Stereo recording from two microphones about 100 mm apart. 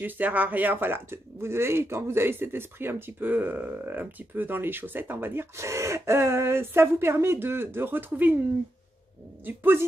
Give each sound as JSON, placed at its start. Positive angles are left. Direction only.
{"t": 0.0, "sound": "speech", "side_deg": -15}
{"t": 9.5, "sound": "speech", "side_deg": -20}